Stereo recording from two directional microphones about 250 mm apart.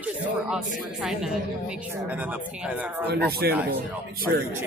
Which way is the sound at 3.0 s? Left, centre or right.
Right.